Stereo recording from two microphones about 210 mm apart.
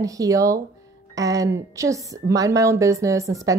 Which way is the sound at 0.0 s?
15° right (ahead or behind).